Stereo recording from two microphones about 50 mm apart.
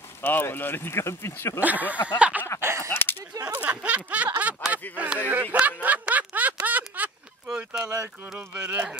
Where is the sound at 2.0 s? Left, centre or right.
Right.